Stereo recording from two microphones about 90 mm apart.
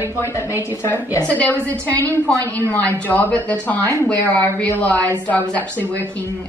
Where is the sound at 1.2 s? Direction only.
15° left (ahead or behind).